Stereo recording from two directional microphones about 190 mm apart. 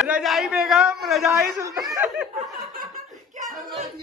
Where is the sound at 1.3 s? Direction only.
15° right (ahead or behind).